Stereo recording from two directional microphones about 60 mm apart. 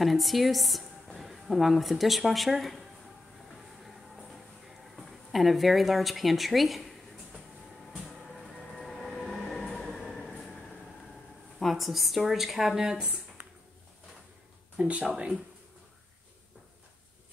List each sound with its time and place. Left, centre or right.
0.0 s a woman's voice: centre
3.8 s a sound: centre
7.9 s train: centre
11.6 s speech: centre
14.8 s speech: right